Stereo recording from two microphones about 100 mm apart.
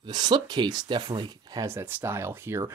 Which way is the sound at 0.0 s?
45° right (ahead or behind).